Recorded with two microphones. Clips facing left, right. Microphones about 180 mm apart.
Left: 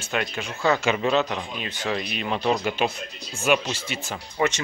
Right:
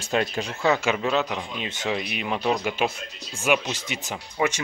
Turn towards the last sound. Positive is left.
turn(degrees=-15)  # may be behind; listen again after turning